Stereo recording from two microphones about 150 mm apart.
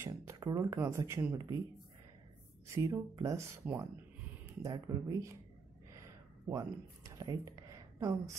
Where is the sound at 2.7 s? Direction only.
20° right (ahead or behind).